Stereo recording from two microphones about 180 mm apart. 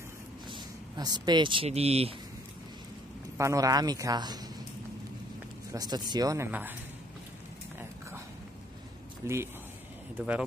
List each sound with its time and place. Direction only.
0.5 s speech: 25° right (ahead or behind)
3.3 s speech: 20° right (ahead or behind)
5.7 s speech: 20° right (ahead or behind)
9.2 s speech: 15° right (ahead or behind)